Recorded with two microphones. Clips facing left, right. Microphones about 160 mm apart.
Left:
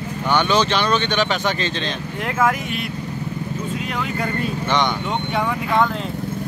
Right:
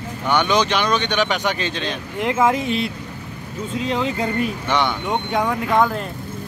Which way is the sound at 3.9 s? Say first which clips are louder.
Right 5 dB; 25° right (ahead or behind).